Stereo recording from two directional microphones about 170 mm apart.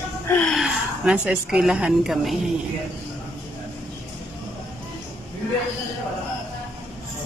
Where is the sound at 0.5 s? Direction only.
Centre (ahead or behind).